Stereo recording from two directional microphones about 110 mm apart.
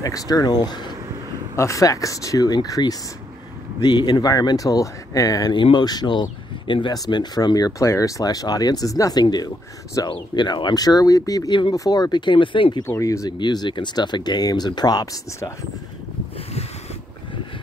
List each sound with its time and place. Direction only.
0.0 s speech: 35° left (ahead or behind)
1.6 s speech: 30° left (ahead or behind)
5.5 s speech: 45° left (ahead or behind)
12.8 s speech: 25° left (ahead or behind)